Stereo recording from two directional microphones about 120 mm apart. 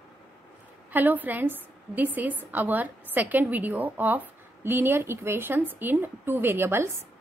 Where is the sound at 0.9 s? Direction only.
15° right (ahead or behind).